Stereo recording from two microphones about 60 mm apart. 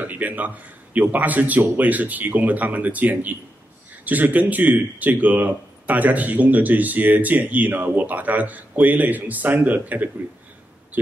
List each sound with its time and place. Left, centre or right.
0.0 s speech: right